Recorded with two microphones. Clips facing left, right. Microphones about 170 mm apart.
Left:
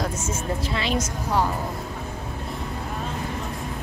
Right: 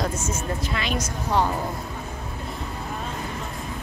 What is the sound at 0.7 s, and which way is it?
Speech, 30° left (ahead or behind).